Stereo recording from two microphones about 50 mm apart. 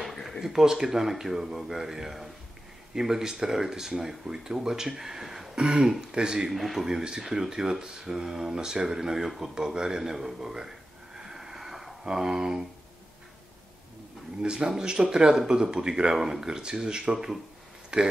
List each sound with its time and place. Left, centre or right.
0.0 s a sound: centre
0.4 s speech: centre
14.4 s speech: centre